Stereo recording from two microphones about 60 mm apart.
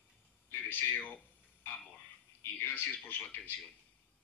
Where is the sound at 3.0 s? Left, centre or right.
Left.